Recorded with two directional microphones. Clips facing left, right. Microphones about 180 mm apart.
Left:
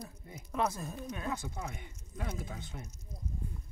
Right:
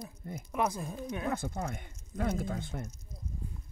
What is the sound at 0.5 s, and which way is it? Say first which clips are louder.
Speech: right 1 dB; 15° right (ahead or behind).